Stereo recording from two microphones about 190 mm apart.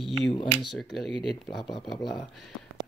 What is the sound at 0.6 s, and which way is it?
Speech, centre (ahead or behind).